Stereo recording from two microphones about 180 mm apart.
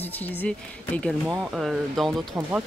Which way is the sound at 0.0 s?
10° left (ahead or behind).